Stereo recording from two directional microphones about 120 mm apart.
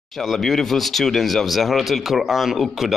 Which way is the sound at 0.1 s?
Centre (ahead or behind).